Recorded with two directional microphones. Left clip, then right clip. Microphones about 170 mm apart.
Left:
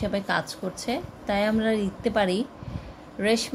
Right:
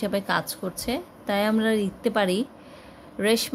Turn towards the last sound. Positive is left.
turn(degrees=-25)  # may be behind; listen again after turning